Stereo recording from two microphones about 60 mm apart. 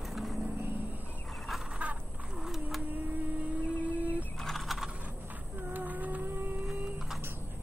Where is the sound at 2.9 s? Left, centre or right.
Right.